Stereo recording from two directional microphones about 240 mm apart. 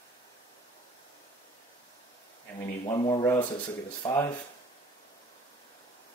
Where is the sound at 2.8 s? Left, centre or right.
Centre.